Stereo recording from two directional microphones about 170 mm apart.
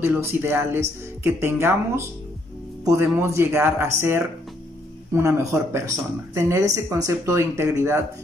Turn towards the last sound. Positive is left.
turn(degrees=-15)  # may be behind; listen again after turning